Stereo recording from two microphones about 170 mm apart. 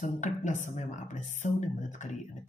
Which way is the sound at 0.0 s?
45° left (ahead or behind).